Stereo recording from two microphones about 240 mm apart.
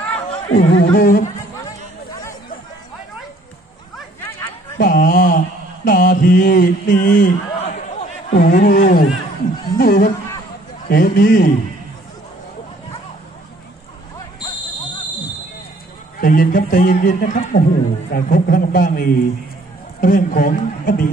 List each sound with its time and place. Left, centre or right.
0.5 s a man's voice: left
4.7 s a sound: left
5.9 s mantra: left
9.8 s a man's voice: left
16.2 s a man's voice: left